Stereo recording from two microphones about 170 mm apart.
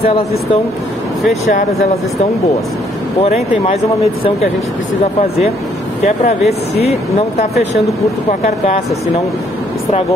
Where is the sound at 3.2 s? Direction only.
40° left (ahead or behind).